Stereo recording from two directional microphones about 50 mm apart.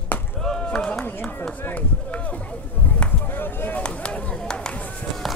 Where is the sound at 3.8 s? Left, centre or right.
Left.